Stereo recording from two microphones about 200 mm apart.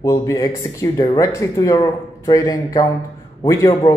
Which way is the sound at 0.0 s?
15° left (ahead or behind).